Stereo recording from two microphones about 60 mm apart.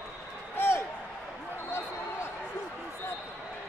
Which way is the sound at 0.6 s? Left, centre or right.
Left.